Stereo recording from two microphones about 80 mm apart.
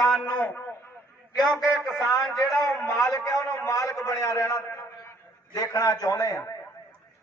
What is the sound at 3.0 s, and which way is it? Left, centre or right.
A man's voice, left.